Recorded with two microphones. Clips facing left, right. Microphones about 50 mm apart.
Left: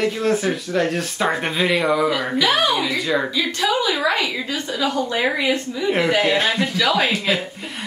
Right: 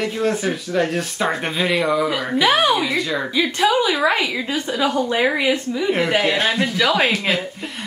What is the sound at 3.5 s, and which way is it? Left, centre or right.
A woman's voice, right.